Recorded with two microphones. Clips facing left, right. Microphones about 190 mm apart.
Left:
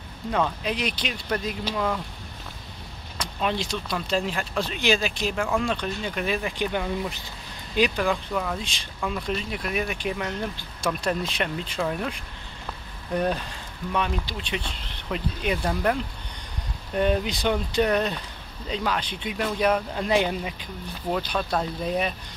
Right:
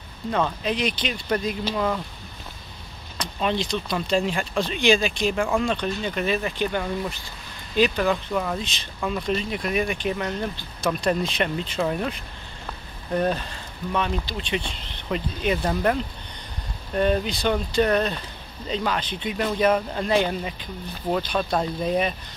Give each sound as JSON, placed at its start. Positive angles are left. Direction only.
{"t": 0.3, "sound": "speech", "side_deg": 5}
{"t": 3.2, "sound": "speech", "side_deg": 5}
{"t": 5.4, "sound": "speech", "side_deg": -10}
{"t": 5.7, "sound": "speech", "side_deg": 5}
{"t": 8.1, "sound": "speech", "side_deg": -5}
{"t": 8.5, "sound": "speech", "side_deg": 10}
{"t": 13.1, "sound": "speech", "side_deg": 5}
{"t": 16.9, "sound": "speech", "side_deg": 10}